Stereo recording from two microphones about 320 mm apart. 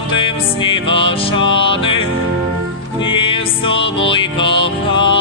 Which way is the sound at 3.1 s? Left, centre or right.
Centre.